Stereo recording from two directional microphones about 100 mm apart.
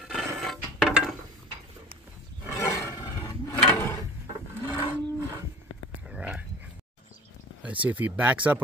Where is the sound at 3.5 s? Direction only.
25° left (ahead or behind).